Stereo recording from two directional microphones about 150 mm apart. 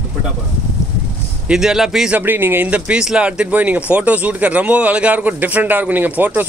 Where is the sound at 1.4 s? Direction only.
5° right (ahead or behind).